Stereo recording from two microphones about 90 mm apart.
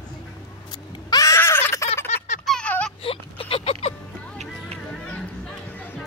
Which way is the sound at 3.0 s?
90° left.